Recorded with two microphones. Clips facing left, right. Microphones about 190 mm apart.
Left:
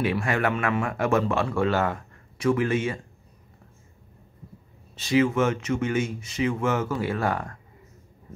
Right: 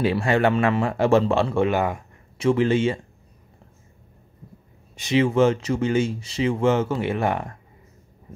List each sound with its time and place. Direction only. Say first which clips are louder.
0.0 s speech: right 5 dB; 30° right (ahead or behind); by 2.0 s 15° right (ahead or behind)
2.3 s speech: right 4 dB; 25° right (ahead or behind)
4.9 s speech: right 1 dB; 20° right (ahead or behind)
5.2 s speech: right 4 dB; 30° right (ahead or behind)